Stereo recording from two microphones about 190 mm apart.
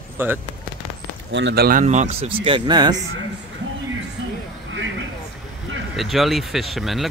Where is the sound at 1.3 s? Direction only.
70° right (ahead or behind); by 1.8 s 55° right (ahead or behind).